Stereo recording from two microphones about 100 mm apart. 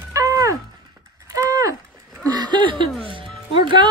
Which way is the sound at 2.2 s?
40° right (ahead or behind).